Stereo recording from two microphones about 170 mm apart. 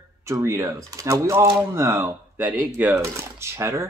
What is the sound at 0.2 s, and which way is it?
Speech, 15° right (ahead or behind).